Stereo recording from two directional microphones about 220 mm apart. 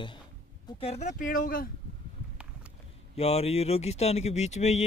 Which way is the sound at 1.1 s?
40° left (ahead or behind).